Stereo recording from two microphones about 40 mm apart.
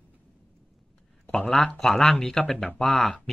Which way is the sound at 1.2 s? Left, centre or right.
Centre.